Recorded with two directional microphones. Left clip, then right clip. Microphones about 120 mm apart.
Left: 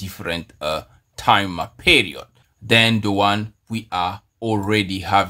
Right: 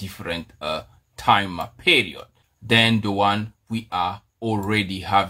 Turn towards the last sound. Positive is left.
turn(degrees=30)  # may be behind; listen again after turning